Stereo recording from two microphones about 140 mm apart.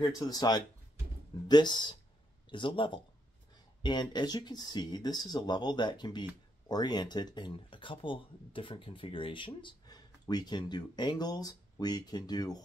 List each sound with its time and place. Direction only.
0.0 s speech: 30° left (ahead or behind)